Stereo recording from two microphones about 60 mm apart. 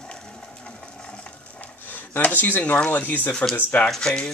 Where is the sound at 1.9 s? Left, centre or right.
Left.